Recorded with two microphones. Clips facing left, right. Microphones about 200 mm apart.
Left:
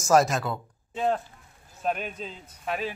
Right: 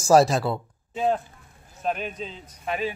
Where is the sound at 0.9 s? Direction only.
5° right (ahead or behind).